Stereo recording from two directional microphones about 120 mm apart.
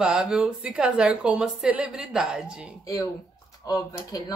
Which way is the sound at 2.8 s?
30° left (ahead or behind).